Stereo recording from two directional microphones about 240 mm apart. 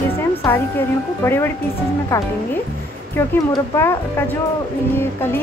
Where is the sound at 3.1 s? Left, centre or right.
Centre.